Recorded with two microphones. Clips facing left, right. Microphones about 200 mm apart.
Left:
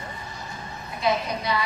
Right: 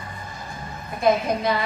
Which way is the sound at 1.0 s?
50° right (ahead or behind).